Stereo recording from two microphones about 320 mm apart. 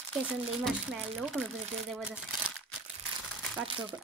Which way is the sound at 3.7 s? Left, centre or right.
Centre.